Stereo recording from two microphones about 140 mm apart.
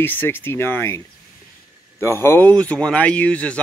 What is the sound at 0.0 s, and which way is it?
Speech, 15° left (ahead or behind).